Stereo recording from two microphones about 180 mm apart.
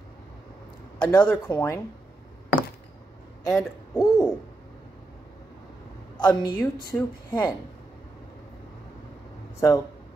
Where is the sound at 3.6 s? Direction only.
20° left (ahead or behind).